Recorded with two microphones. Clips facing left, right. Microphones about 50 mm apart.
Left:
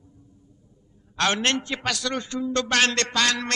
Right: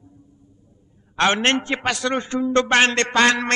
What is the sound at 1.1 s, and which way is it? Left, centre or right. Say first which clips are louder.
A man's voice: right 5 dB; right.